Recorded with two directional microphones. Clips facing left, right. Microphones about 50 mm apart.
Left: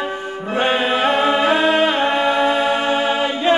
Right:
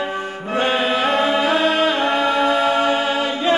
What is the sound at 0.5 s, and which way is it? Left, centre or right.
A capella, left.